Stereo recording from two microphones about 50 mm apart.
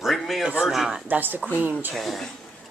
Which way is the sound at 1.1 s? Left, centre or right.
Right.